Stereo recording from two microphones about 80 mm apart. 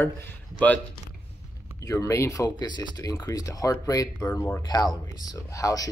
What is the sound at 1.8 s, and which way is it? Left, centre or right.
Speech, left.